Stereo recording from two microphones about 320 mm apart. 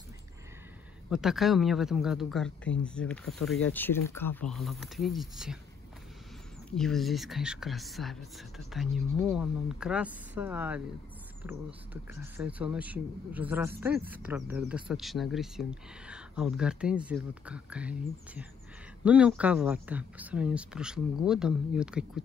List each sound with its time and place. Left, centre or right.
1.1 s speech: centre
6.7 s speech: centre